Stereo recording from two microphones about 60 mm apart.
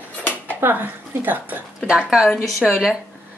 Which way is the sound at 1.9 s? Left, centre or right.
Centre.